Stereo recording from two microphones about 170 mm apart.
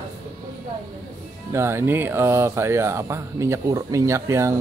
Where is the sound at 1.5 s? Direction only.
15° right (ahead or behind).